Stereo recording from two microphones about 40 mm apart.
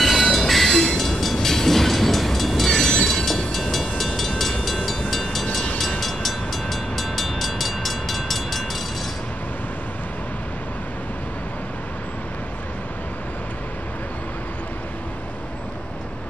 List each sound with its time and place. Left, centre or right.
0.0 s train: centre
2.7 s train: centre
3.5 s vehicle: centre
5.1 s train: centre